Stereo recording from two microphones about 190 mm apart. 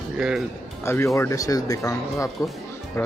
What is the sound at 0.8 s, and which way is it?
Speech, 15° left (ahead or behind).